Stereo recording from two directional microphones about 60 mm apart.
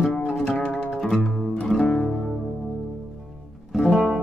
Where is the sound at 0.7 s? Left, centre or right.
Left.